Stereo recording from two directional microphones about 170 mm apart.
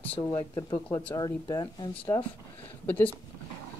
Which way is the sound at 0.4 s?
20° left (ahead or behind).